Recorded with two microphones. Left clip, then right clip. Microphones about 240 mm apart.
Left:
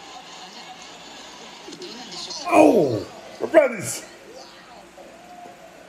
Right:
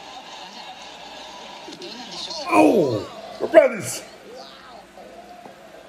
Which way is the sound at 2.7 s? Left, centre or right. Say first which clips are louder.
Even; centre.